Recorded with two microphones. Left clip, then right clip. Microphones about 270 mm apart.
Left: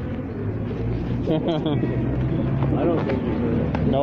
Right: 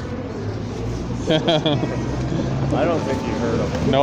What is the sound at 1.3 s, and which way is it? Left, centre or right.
Speech, right.